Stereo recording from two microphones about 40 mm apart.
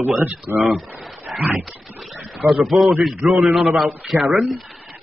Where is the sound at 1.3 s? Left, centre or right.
Right.